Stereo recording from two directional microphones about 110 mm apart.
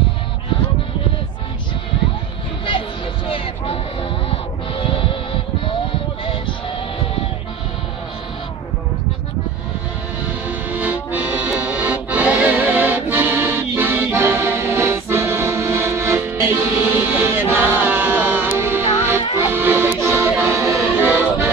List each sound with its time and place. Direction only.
4.7 s music: 55° left (ahead or behind)
10.2 s accordion: 15° right (ahead or behind)
19.5 s music: 20° right (ahead or behind)
20.4 s accordion: 25° right (ahead or behind)